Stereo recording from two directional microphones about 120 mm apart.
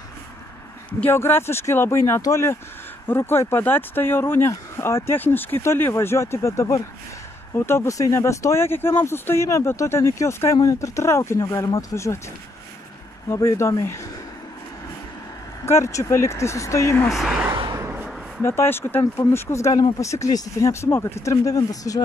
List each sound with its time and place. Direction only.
1.0 s speech: 20° left (ahead or behind)
13.3 s speech: 25° left (ahead or behind)
15.6 s speech: 25° left (ahead or behind)
17.1 s speech: centre (ahead or behind)
18.4 s speech: 20° left (ahead or behind)